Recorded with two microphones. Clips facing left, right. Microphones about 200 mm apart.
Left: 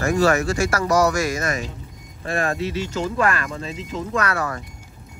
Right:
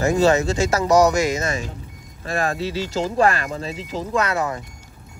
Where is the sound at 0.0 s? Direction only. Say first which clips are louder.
Right 2 dB; 20° right (ahead or behind).